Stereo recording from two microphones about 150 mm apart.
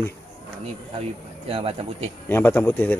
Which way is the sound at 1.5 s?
35° right (ahead or behind).